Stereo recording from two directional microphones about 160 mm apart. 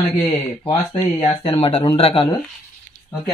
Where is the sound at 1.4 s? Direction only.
35° left (ahead or behind).